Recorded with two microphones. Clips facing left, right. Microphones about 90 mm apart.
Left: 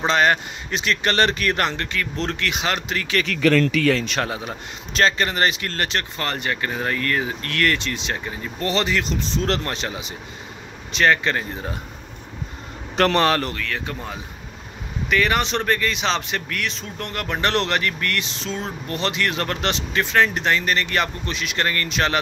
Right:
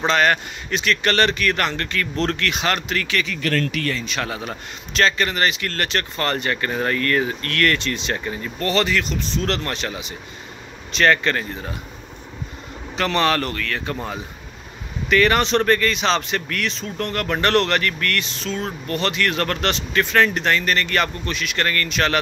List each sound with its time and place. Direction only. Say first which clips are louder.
0.0 s speech: even; 20° left (ahead or behind)
1.9 s speech: right 3 dB; 15° left (ahead or behind)
3.9 s a man's voice: left 5 dB; 80° left
4.9 s speech: even; 30° left (ahead or behind)
6.1 s speech: right 3 dB; 10° left (ahead or behind)
8.6 s speech: right 1 dB; 25° left (ahead or behind)
11.0 s speech: right 1 dB; 15° left (ahead or behind)
12.9 s speech: left 4 dB; 50° left (ahead or behind)
13.2 s speech: even; 25° left (ahead or behind)
13.6 s speech: right 2 dB; 10° left (ahead or behind); by 22.2 s 25° left (ahead or behind)